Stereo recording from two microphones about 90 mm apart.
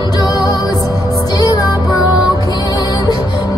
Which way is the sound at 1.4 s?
45° left (ahead or behind).